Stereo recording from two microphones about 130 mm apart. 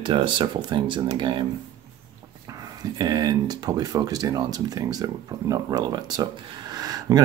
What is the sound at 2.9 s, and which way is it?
Speech, 30° right (ahead or behind).